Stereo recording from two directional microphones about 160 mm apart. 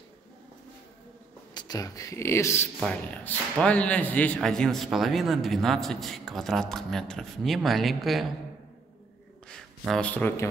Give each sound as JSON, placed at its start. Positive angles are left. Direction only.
{"t": 1.5, "sound": "a man's voice", "side_deg": 25}
{"t": 9.5, "sound": "speech", "side_deg": 5}